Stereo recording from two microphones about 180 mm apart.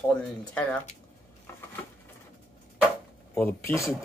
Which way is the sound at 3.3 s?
10° left (ahead or behind).